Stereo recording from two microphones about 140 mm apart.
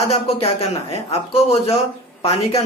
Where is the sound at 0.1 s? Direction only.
45° left (ahead or behind).